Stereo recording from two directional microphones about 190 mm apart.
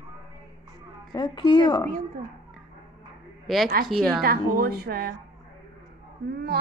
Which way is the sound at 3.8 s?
Centre (ahead or behind).